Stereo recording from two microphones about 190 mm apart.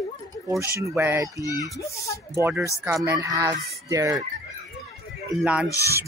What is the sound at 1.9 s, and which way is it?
Speech, 15° left (ahead or behind).